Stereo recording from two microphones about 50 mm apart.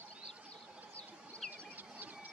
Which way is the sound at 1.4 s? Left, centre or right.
Centre.